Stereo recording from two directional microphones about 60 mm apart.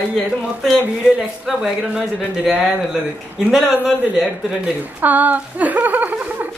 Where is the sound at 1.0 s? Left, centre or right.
Centre.